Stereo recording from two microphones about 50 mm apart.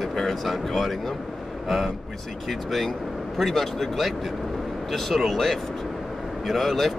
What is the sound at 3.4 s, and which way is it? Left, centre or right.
Speech, centre.